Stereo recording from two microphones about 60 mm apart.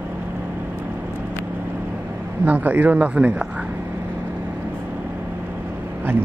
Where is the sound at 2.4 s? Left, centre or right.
Right.